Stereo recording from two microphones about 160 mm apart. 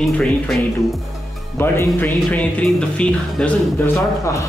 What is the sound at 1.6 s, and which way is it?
Speech, 15° left (ahead or behind).